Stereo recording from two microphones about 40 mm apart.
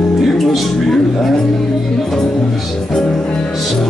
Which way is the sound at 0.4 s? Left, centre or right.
Centre.